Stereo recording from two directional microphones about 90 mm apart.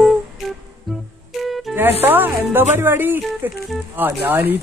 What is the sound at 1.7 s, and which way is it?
Music, 5° left (ahead or behind).